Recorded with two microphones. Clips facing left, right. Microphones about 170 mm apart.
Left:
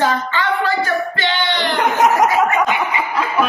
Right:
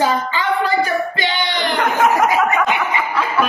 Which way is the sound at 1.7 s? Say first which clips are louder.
Left 1 dB; 20° left (ahead or behind).